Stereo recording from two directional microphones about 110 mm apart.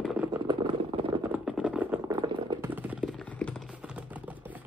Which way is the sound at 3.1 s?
10° left (ahead or behind).